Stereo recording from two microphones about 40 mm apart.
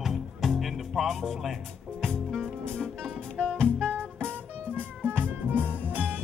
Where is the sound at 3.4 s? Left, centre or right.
Left.